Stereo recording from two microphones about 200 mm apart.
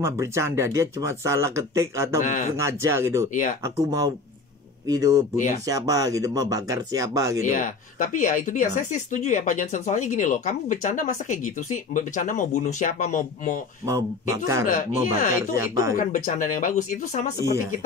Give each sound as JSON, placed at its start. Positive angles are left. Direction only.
{"t": 0.0, "sound": "speech", "side_deg": -15}
{"t": 2.2, "sound": "speech", "side_deg": 35}
{"t": 2.5, "sound": "speech", "side_deg": -15}
{"t": 7.4, "sound": "speech", "side_deg": 40}
{"t": 13.8, "sound": "speech", "side_deg": -15}
{"t": 14.7, "sound": "speech", "side_deg": 40}
{"t": 15.5, "sound": "speech", "side_deg": -15}
{"t": 16.0, "sound": "speech", "side_deg": 40}
{"t": 17.5, "sound": "speech", "side_deg": -15}